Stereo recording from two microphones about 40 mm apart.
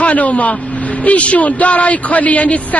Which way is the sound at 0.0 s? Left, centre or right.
Left.